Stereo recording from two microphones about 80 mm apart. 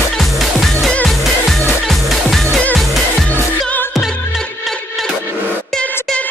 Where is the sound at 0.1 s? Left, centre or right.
Centre.